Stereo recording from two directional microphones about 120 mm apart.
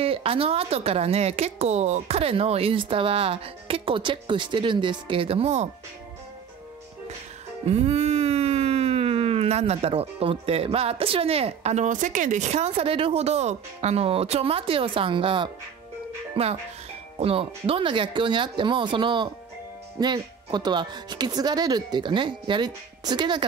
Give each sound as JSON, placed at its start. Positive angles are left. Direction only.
{"t": 0.0, "sound": "speech", "side_deg": -50}
{"t": 7.6, "sound": "music", "side_deg": -60}
{"t": 16.4, "sound": "speech", "side_deg": -50}